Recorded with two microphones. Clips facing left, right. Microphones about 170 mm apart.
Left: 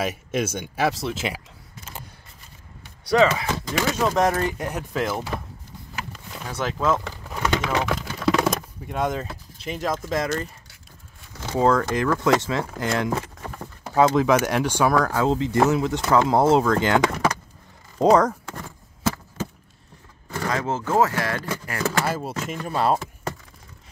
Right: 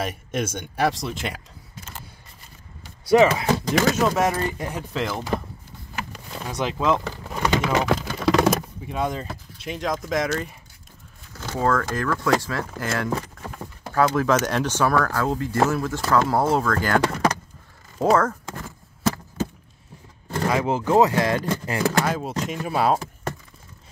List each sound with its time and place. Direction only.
0.0 s speech: 5° left (ahead or behind)
3.1 s speech: 25° right (ahead or behind)
3.4 s speech: 40° right (ahead or behind)
4.1 s speech: 5° right (ahead or behind)
6.1 s speech: 10° right (ahead or behind)
7.1 s a sound: 5° right (ahead or behind)
10.1 s speech: centre (ahead or behind)
11.5 s speech: 15° left (ahead or behind)
20.4 s speech: 15° right (ahead or behind)
22.0 s speech: 5° left (ahead or behind)